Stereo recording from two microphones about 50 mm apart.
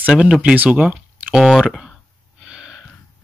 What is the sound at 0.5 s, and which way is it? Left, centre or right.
Speech, right.